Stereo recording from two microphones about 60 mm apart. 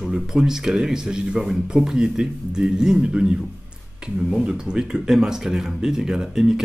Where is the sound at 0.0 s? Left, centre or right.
Centre.